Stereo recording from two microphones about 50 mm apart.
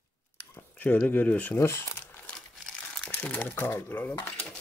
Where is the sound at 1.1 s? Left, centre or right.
Left.